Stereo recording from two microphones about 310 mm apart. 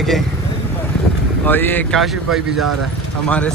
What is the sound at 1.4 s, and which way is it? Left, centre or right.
Speech, centre.